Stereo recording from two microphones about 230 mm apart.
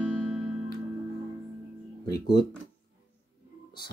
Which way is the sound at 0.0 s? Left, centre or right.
Centre.